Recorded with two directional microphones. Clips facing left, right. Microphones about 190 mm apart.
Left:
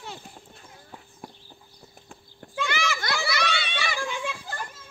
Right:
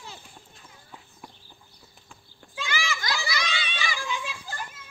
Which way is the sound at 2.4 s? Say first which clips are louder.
Left 4 dB; 60° left (ahead or behind).